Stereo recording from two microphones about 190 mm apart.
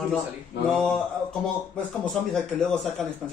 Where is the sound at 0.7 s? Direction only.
5° left (ahead or behind).